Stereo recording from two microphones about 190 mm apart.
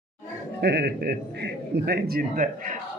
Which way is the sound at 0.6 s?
60° right (ahead or behind).